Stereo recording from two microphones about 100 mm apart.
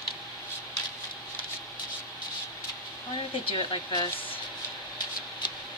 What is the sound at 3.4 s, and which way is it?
Speech, 60° left (ahead or behind).